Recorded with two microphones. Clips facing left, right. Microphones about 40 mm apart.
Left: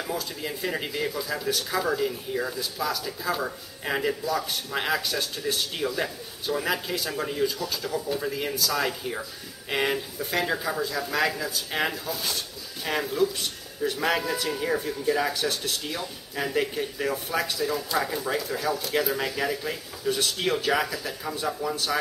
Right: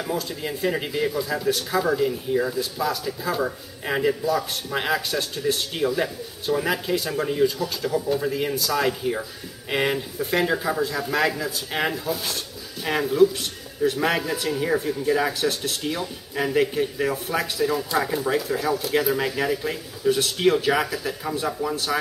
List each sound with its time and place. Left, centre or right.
0.0 s a man's voice: centre